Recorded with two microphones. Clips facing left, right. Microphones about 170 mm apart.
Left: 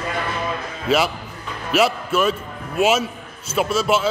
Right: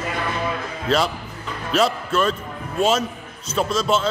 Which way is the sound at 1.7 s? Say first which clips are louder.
Left 1 dB; 5° left (ahead or behind).